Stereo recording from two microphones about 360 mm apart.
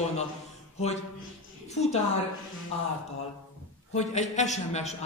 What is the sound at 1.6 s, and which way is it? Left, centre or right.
Speech, centre.